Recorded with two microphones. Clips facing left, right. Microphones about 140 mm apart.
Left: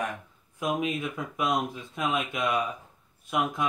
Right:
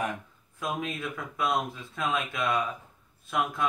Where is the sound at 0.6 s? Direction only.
15° left (ahead or behind).